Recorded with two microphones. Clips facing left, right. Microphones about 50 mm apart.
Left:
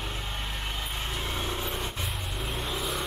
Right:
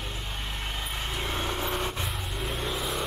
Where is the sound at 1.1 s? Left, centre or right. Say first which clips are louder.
Right 3 dB; centre.